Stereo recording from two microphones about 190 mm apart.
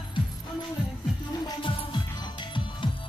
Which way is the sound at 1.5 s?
25° left (ahead or behind).